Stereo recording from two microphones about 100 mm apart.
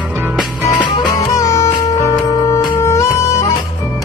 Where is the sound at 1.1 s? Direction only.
30° left (ahead or behind).